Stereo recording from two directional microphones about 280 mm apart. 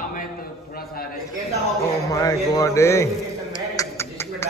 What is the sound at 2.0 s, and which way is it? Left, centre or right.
A man's voice, centre.